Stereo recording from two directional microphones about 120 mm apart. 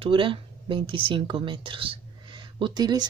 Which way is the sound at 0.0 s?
45° right (ahead or behind).